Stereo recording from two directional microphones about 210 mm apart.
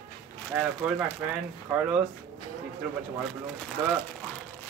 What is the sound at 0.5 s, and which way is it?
Speech, 5° right (ahead or behind).